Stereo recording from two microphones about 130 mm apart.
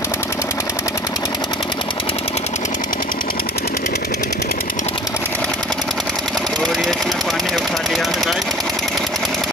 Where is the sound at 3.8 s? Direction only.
75° left (ahead or behind).